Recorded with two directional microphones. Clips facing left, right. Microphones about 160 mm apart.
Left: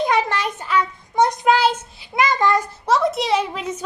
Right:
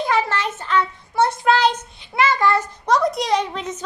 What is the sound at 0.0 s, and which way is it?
Child singing, 20° left (ahead or behind).